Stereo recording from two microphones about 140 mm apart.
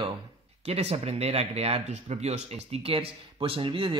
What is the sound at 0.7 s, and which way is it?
Speech, 50° right (ahead or behind).